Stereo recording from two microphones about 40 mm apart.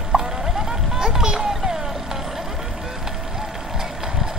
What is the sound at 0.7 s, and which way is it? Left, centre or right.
Vehicle, centre.